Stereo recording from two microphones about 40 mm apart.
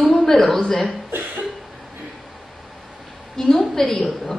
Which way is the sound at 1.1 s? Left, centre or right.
Right.